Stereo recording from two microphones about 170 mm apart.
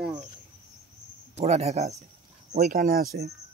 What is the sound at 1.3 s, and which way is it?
Speech, 40° right (ahead or behind).